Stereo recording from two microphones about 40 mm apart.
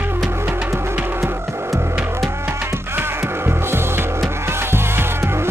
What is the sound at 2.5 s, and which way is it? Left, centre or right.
Music, right.